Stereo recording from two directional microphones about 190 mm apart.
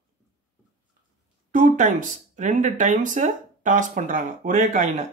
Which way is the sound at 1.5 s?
45° right (ahead or behind).